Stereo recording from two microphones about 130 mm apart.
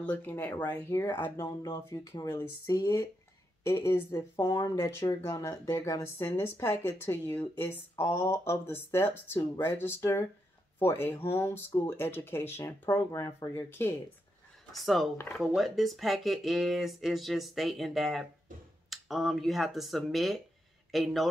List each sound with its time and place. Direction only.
0.0 s speech: 10° left (ahead or behind); by 2.2 s 30° left (ahead or behind)
2.2 s speech: 20° left (ahead or behind)
13.6 s speech: 15° left (ahead or behind)
14.7 s speech: centre (ahead or behind)